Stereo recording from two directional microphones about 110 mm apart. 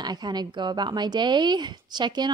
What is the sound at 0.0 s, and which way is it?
A woman's voice, 40° right (ahead or behind).